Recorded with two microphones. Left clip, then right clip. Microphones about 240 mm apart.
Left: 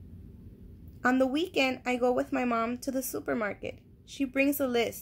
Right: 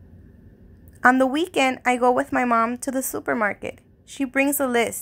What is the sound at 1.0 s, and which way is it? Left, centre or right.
A woman's voice, right.